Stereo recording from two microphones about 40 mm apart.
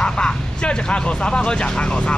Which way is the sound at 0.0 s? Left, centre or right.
Left.